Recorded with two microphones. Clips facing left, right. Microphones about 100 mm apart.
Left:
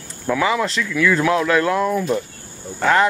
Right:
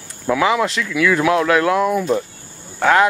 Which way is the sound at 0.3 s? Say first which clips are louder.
Right 2 dB; 10° right (ahead or behind).